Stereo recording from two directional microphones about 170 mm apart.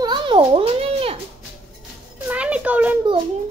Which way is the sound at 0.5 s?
35° right (ahead or behind).